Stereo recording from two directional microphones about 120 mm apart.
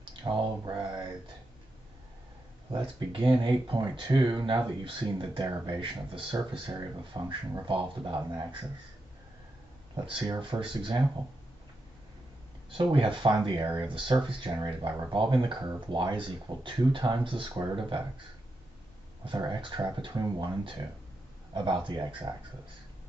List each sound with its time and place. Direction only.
0.1 s a sound: 40° right (ahead or behind)
2.7 s speech: 45° right (ahead or behind)
9.9 s speech: 45° right (ahead or behind)
12.7 s speech: 45° right (ahead or behind)
19.2 s speech: 45° right (ahead or behind)